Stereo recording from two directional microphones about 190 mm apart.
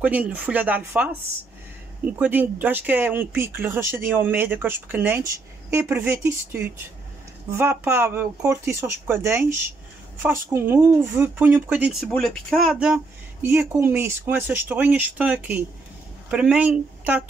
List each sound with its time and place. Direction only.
0.0 s speech: 10° right (ahead or behind)
2.1 s speech: 10° right (ahead or behind)